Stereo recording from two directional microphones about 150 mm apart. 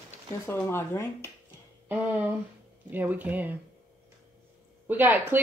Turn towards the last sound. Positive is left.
turn(degrees=-15)  # may be behind; listen again after turning